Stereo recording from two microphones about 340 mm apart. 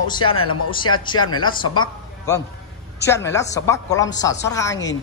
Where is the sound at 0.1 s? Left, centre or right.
Centre.